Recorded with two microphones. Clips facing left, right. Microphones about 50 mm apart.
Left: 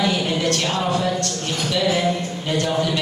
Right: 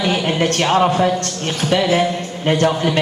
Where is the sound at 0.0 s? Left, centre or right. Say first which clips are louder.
Right 3 dB; right.